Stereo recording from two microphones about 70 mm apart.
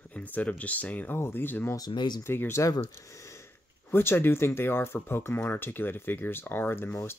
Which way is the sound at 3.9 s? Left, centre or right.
Left.